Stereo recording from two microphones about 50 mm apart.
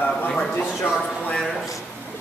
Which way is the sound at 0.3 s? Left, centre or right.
Centre.